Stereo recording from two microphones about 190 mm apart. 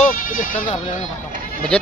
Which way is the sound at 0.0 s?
50° left (ahead or behind).